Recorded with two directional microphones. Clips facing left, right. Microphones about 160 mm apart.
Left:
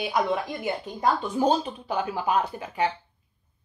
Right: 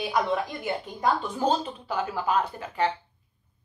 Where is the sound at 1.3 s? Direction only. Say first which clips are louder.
Left 3 dB; 15° left (ahead or behind).